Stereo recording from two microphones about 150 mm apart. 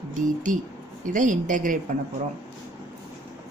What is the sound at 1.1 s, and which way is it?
Speech, 60° right (ahead or behind).